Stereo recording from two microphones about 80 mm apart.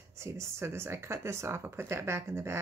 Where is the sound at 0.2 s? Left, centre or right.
Right.